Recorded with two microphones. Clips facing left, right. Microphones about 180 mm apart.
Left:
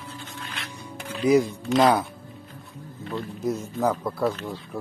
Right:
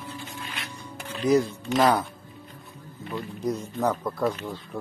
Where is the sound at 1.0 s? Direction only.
10° left (ahead or behind).